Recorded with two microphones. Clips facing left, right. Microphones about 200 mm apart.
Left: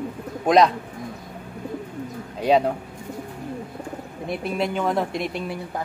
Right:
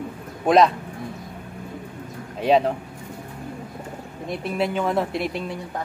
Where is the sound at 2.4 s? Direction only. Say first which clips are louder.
Even; centre (ahead or behind).